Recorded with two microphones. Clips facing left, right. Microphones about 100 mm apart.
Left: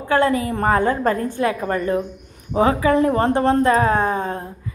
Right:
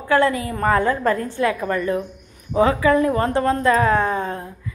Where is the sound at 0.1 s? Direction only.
25° left (ahead or behind).